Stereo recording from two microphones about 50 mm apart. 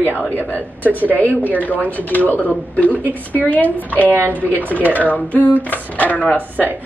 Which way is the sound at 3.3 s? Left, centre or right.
Left.